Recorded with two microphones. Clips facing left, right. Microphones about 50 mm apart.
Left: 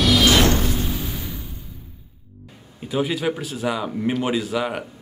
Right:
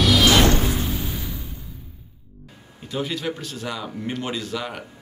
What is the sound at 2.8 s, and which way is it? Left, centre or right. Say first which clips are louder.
Speech: left 4 dB; centre.